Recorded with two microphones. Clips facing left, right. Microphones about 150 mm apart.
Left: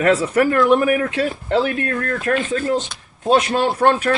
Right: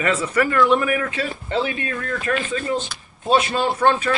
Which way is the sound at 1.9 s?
55° left (ahead or behind).